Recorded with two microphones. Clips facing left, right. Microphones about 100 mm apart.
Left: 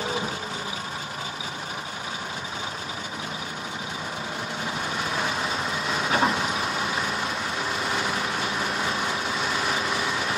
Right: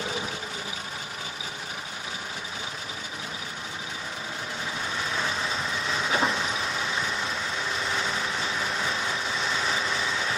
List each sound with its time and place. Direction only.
5.1 s vehicle: 15° left (ahead or behind)
5.9 s vehicle: 40° left (ahead or behind)